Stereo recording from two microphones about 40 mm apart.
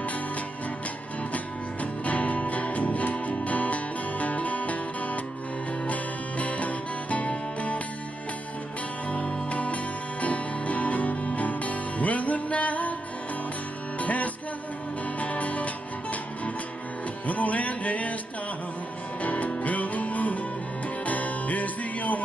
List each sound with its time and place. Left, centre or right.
1.3 s music: left
9.1 s music: left
13.9 s music: left
19.2 s music: left